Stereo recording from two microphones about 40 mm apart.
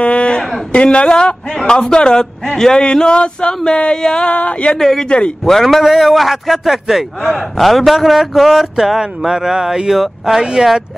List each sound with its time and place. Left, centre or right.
0.0 s a sound: left
0.7 s speech: left
4.3 s speech: left
4.7 s speech: centre
5.0 s speech: left
5.4 s a man's voice: centre
9.9 s a man's voice: centre